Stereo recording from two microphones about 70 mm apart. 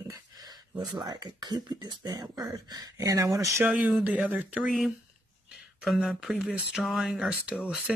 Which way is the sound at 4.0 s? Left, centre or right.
Right.